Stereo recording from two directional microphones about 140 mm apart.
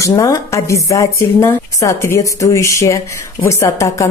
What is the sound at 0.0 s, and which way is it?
A woman's voice, 25° left (ahead or behind).